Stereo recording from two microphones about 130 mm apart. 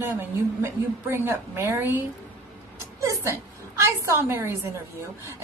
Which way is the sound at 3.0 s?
25° right (ahead or behind).